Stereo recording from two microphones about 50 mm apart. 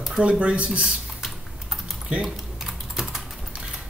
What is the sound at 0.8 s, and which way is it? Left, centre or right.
Typing, centre.